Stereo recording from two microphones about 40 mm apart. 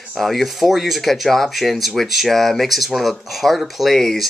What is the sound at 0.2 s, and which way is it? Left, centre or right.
Speech, centre.